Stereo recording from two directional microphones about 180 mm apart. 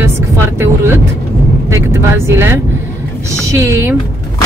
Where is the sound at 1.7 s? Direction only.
15° right (ahead or behind).